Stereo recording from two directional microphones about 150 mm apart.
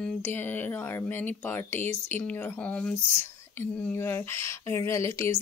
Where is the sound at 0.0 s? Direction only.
10° left (ahead or behind).